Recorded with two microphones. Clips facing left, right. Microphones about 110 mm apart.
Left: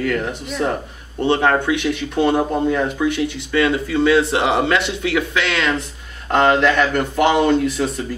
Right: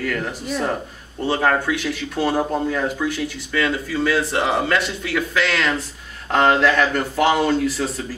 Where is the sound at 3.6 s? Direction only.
25° left (ahead or behind).